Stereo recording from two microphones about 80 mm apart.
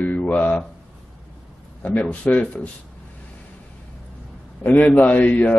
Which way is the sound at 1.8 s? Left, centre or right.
Centre.